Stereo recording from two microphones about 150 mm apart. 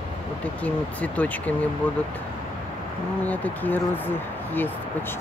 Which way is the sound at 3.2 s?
10° left (ahead or behind).